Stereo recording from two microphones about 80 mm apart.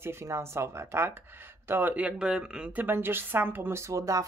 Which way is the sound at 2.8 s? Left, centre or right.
Right.